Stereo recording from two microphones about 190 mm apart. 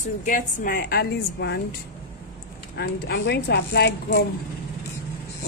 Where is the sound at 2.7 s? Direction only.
65° left (ahead or behind).